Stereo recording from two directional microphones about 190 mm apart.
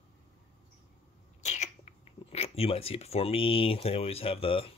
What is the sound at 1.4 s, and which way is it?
Speech, 40° left (ahead or behind).